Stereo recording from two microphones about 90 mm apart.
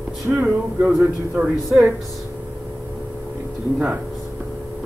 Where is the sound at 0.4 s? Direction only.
15° right (ahead or behind).